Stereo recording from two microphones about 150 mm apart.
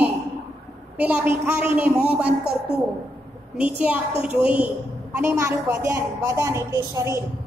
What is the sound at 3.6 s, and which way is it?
A woman's voice, 10° right (ahead or behind).